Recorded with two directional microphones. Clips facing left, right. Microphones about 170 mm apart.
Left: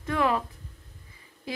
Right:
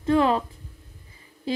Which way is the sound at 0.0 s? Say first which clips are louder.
Right 6 dB; 30° right (ahead or behind).